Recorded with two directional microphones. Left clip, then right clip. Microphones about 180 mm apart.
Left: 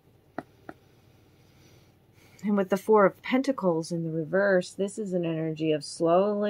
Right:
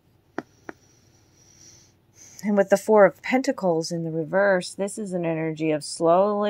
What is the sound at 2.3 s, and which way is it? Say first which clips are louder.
Speech: right 7 dB; 35° right (ahead or behind).